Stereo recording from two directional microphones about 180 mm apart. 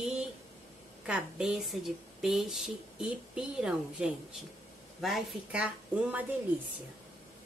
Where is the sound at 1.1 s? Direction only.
5° right (ahead or behind).